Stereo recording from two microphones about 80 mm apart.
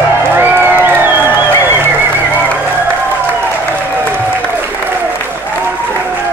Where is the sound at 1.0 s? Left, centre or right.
Right.